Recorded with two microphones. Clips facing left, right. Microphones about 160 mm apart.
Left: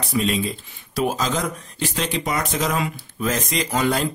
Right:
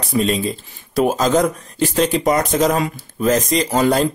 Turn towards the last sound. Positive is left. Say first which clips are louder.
# right 6 dB
turn(degrees=-35)  # may be behind; listen again after turning